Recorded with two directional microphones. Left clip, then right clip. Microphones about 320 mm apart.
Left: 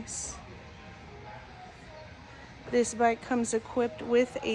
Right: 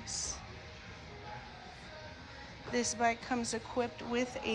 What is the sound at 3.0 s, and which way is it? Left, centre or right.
A woman's voice, centre.